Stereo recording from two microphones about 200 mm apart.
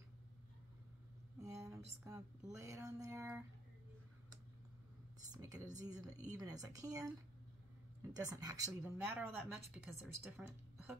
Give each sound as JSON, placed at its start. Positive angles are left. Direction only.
{"t": 1.4, "sound": "a woman's voice", "side_deg": -15}
{"t": 5.3, "sound": "a woman's voice", "side_deg": -15}
{"t": 8.2, "sound": "a woman's voice", "side_deg": -15}